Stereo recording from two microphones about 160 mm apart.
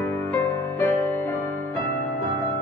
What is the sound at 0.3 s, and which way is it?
Music, 15° left (ahead or behind).